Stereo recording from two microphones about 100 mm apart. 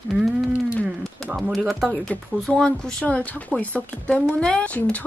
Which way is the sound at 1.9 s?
10° left (ahead or behind).